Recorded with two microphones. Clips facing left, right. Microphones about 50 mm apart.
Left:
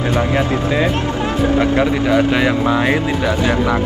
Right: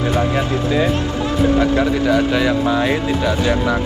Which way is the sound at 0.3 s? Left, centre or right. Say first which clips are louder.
Left 1 dB; left.